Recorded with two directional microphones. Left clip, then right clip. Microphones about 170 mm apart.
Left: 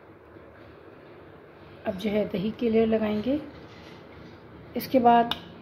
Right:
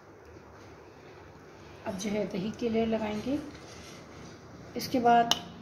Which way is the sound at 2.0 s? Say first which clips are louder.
Left 5 dB; 45° left (ahead or behind).